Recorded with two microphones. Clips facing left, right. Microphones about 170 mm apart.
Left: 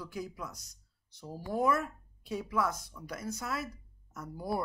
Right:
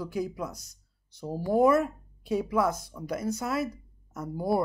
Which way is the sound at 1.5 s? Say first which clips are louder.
Right 8 dB; 15° right (ahead or behind).